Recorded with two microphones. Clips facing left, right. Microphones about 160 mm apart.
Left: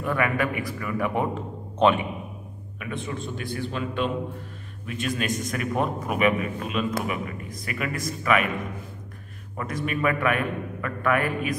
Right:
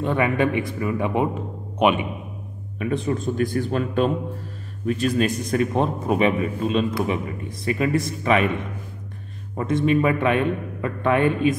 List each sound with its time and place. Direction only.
0.0 s a man's voice: 25° right (ahead or behind)
2.8 s a man's voice: 35° right (ahead or behind)